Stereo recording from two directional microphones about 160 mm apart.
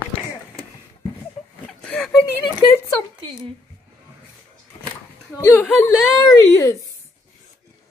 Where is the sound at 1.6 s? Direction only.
5° left (ahead or behind).